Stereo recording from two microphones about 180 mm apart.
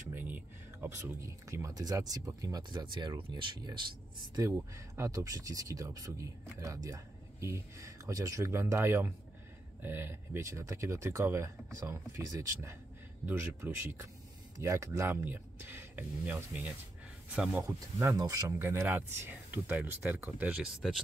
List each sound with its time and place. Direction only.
0.1 s speech: 10° right (ahead or behind)